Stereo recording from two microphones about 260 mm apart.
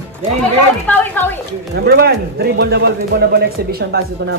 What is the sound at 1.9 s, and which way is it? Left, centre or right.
Speech, right.